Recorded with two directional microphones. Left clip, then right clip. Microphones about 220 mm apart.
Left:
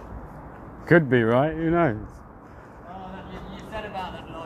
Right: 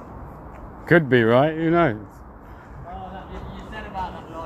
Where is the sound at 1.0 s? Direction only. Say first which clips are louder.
Right 4 dB; 10° right (ahead or behind).